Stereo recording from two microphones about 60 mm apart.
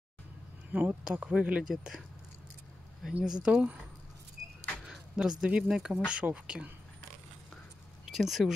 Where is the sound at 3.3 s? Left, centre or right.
Centre.